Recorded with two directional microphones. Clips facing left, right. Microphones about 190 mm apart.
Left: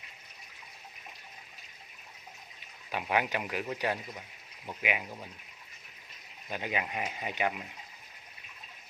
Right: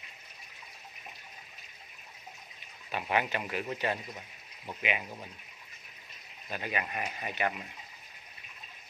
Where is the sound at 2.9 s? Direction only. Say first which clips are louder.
Left 1 dB; 15° left (ahead or behind).